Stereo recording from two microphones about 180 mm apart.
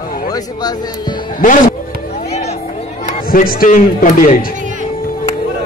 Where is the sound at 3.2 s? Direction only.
55° left (ahead or behind).